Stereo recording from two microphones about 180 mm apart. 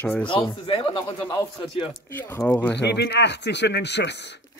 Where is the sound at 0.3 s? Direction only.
25° left (ahead or behind).